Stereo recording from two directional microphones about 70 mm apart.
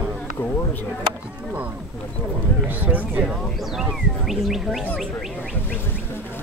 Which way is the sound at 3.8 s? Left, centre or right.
Centre.